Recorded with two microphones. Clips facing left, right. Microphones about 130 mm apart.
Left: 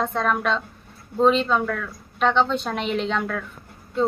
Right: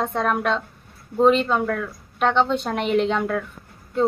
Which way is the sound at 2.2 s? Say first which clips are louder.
Right 1 dB; 10° right (ahead or behind).